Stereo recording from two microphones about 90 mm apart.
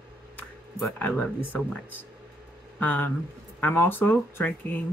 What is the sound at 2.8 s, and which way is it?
Speech, 20° left (ahead or behind).